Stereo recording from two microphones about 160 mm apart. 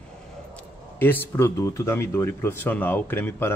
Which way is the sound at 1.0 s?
10° left (ahead or behind).